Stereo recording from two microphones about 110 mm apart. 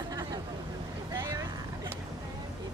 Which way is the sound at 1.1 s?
30° right (ahead or behind).